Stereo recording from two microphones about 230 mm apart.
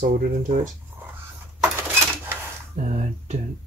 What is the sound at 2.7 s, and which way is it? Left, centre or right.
Speech, right.